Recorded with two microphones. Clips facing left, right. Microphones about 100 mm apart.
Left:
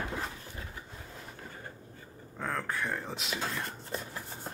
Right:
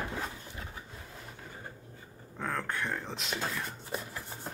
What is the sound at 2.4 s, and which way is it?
Speech, centre (ahead or behind).